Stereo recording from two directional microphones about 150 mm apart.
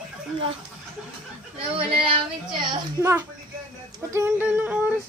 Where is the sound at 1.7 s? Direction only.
35° right (ahead or behind).